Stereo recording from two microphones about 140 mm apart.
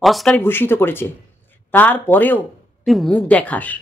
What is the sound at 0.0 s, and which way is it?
Speech, centre (ahead or behind).